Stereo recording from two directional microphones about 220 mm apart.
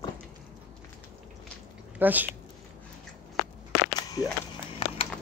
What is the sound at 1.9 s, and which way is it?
Speech, 10° right (ahead or behind).